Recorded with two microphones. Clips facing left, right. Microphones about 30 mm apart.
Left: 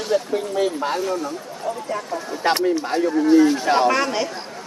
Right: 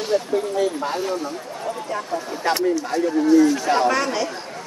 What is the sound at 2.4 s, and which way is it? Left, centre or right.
Speech, left.